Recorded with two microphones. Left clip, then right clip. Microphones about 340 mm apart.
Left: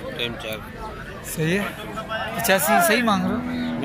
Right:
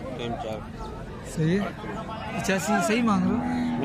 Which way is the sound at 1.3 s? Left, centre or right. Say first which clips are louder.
Left 4 dB; centre.